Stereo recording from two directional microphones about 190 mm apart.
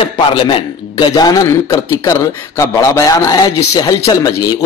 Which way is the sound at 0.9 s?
20° left (ahead or behind).